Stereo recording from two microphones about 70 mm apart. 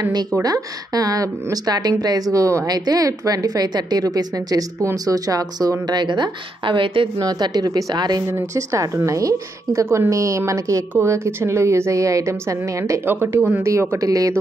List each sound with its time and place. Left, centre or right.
0.4 s a woman's voice: right
8.3 s a woman's voice: right
13.0 s speech: right
13.6 s a woman's voice: right